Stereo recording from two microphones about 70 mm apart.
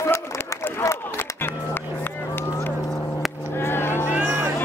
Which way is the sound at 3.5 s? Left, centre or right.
Left.